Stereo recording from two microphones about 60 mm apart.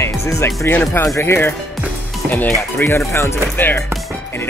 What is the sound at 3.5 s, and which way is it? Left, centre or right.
Speech, left.